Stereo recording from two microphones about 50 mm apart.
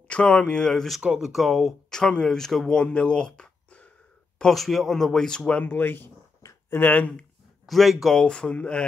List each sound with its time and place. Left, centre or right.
0.1 s speech: left
1.0 s speech: centre
1.3 s speech: centre
1.9 s speech: centre
2.8 s speech: centre
4.4 s speech: centre
5.6 s speech: left
6.9 s speech: left
7.6 s speech: centre
8.2 s speech: centre